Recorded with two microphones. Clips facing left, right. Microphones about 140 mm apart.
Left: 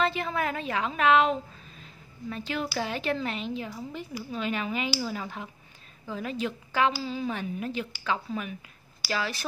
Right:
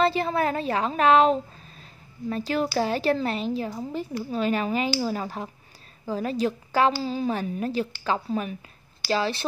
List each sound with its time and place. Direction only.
0.0 s a woman's voice: 35° right (ahead or behind)